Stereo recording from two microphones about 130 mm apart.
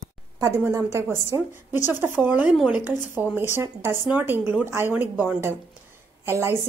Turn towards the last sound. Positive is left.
turn(degrees=-20)  # may be behind; listen again after turning